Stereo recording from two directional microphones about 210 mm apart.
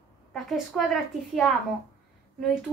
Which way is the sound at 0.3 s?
Centre (ahead or behind).